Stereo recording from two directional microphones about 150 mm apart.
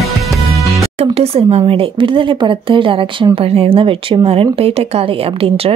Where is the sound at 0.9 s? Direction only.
40° right (ahead or behind).